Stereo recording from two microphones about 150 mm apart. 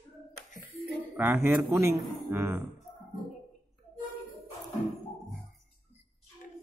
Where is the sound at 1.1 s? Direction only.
15° right (ahead or behind).